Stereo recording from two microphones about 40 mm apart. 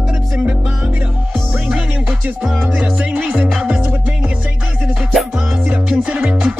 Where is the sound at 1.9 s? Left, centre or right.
Right.